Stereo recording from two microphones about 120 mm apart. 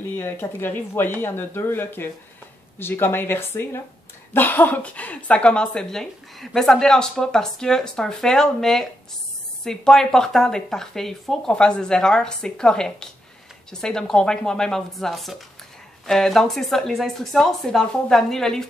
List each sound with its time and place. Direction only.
0.1 s speech: 20° left (ahead or behind); by 18.7 s 5° left (ahead or behind)